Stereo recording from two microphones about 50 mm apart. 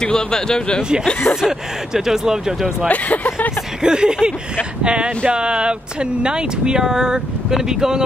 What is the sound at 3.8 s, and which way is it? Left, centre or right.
Speech, centre.